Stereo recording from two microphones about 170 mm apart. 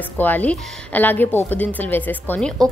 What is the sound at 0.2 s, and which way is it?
A woman's voice, 10° left (ahead or behind).